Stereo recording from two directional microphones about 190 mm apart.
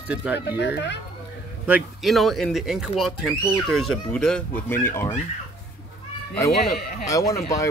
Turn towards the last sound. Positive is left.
turn(degrees=15)  # may be behind; listen again after turning